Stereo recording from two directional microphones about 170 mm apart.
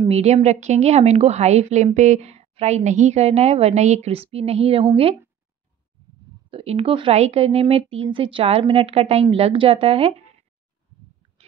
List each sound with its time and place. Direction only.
0.1 s a woman's voice: 40° right (ahead or behind)
6.5 s a woman's voice: 35° right (ahead or behind)